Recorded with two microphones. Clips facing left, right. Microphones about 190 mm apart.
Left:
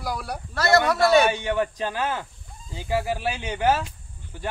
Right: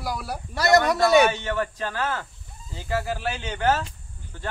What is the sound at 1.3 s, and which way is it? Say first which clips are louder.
A man's voice: left 2 dB; 15° left (ahead or behind).